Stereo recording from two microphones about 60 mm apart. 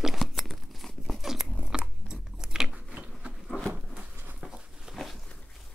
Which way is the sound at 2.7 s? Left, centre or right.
Centre.